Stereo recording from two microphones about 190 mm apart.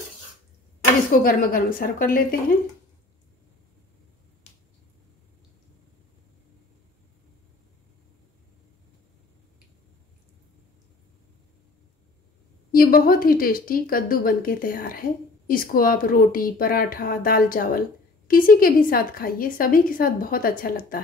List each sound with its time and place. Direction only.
0.7 s a woman's voice: 50° left (ahead or behind)
12.7 s a woman's voice: 50° left (ahead or behind)